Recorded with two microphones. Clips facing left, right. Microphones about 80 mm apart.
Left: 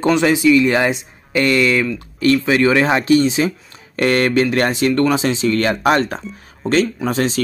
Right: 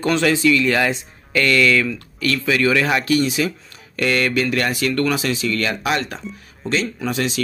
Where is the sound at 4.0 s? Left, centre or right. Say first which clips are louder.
Left 4 dB; left.